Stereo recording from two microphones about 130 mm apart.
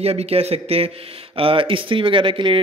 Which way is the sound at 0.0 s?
50° right (ahead or behind).